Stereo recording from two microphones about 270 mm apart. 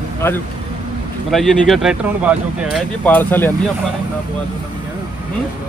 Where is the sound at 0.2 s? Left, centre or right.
Centre.